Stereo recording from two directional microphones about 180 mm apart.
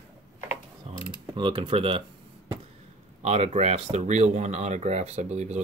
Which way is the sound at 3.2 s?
35° right (ahead or behind).